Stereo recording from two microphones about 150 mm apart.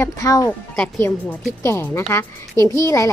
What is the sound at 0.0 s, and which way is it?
Speech, 20° left (ahead or behind).